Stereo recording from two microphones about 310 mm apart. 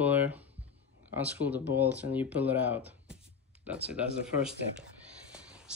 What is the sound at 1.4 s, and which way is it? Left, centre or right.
Speech, left.